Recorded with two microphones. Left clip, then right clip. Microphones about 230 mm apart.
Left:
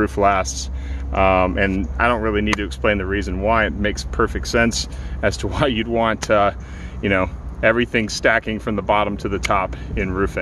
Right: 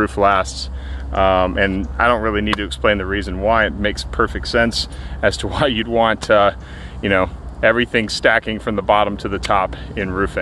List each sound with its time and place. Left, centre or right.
0.0 s speech: centre